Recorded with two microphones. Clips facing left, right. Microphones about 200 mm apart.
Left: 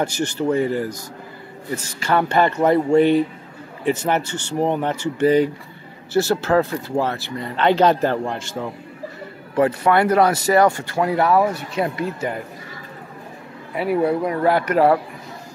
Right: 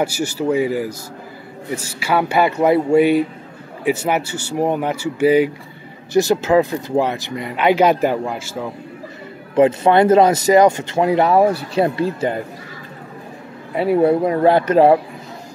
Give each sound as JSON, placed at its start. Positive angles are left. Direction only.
{"t": 0.0, "sound": "speech", "side_deg": -10}
{"t": 9.6, "sound": "speech", "side_deg": -20}
{"t": 13.7, "sound": "speech", "side_deg": -25}